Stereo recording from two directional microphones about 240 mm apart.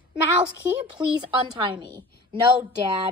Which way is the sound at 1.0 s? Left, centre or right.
Centre.